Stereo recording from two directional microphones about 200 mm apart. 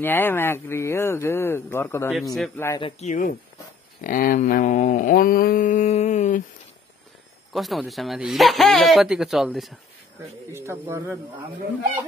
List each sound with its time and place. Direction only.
0.0 s speech: 10° left (ahead or behind)
3.0 s mantra: 40° left (ahead or behind)
7.5 s speech: centre (ahead or behind)
10.5 s a man's voice: 15° right (ahead or behind)